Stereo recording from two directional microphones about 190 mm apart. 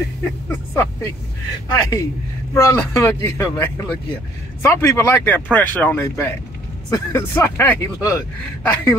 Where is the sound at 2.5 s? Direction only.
15° left (ahead or behind).